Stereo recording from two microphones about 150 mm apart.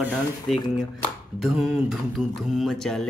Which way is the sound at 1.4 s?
Centre (ahead or behind).